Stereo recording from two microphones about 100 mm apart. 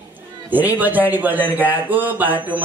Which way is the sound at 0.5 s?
15° right (ahead or behind).